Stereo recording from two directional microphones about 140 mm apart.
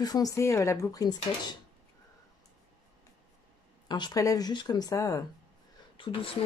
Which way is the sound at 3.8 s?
30° left (ahead or behind).